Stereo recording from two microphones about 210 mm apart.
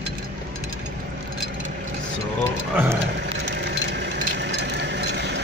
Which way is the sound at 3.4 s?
55° right (ahead or behind).